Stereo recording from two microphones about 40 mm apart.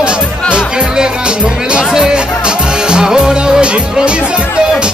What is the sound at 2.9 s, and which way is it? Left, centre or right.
Music, centre.